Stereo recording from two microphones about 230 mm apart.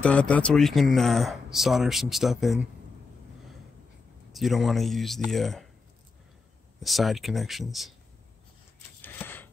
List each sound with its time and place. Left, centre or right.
0.0 s speech: centre
4.3 s speech: centre
6.8 s speech: centre
9.0 s typewriter: centre